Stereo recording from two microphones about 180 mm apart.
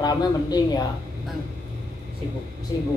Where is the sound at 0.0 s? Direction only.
20° left (ahead or behind).